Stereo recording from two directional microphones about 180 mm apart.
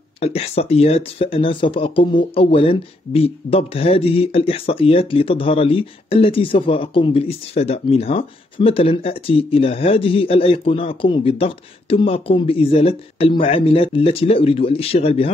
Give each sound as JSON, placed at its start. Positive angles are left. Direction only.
{"t": 0.2, "sound": "speech", "side_deg": 35}